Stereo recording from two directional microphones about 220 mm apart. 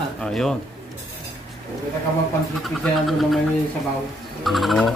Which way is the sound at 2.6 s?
Centre (ahead or behind).